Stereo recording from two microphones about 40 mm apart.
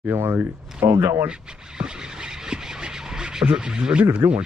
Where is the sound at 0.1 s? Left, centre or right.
Right.